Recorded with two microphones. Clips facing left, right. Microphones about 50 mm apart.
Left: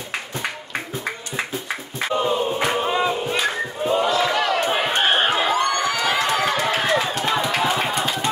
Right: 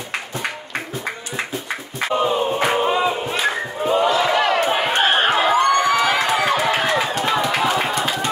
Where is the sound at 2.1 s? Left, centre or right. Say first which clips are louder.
Right 2 dB; centre.